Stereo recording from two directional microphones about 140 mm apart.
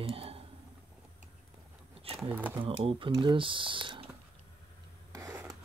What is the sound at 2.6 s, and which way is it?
Speech, 40° right (ahead or behind).